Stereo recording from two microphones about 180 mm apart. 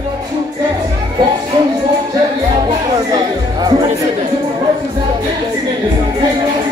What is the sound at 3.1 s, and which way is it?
Music, 20° right (ahead or behind).